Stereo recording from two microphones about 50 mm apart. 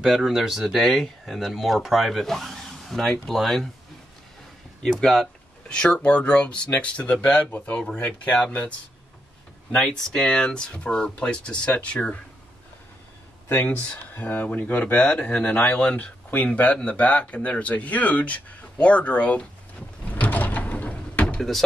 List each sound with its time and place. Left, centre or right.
0.0 s speech: centre
4.8 s speech: centre
5.7 s speech: centre
7.2 s speech: centre
7.5 s speech: left
9.8 s speech: centre
13.7 s speech: left
15.5 s speech: left
20.1 s door: left
21.4 s door: centre